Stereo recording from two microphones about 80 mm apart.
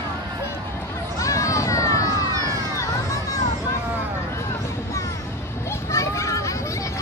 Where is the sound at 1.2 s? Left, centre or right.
Left.